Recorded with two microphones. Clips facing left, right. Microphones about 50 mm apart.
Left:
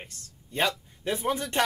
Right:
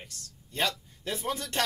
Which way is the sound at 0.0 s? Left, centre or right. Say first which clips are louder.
Left 2 dB; left.